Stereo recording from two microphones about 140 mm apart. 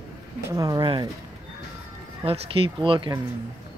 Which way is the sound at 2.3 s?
40° right (ahead or behind).